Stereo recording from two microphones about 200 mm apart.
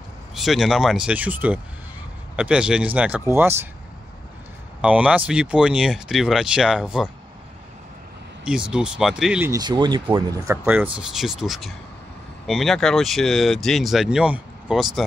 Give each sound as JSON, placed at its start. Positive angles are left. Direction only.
{"t": 0.3, "sound": "speech", "side_deg": 0}
{"t": 4.8, "sound": "speech", "side_deg": -5}
{"t": 8.5, "sound": "speech", "side_deg": -5}
{"t": 9.5, "sound": "speech", "side_deg": -20}